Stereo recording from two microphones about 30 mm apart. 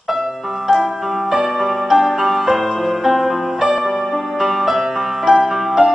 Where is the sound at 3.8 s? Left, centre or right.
Centre.